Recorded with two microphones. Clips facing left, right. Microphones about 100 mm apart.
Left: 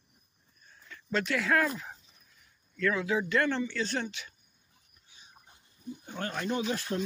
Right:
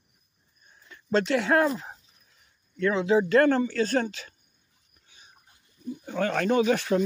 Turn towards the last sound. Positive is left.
turn(degrees=-90)